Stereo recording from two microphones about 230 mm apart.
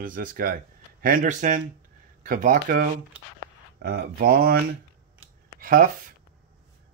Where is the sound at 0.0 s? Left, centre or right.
Right.